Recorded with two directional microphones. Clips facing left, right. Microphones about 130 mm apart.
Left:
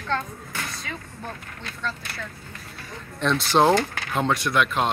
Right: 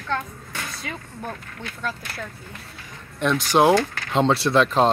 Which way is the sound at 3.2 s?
10° right (ahead or behind).